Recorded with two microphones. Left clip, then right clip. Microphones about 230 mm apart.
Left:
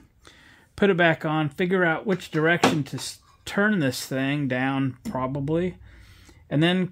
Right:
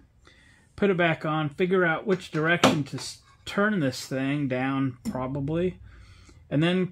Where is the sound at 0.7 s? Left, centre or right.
Left.